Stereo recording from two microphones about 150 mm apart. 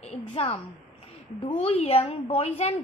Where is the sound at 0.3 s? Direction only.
40° left (ahead or behind).